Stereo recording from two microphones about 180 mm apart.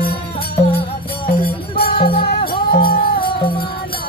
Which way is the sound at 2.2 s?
60° left (ahead or behind).